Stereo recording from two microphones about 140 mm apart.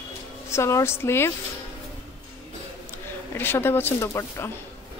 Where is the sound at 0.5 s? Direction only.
20° left (ahead or behind).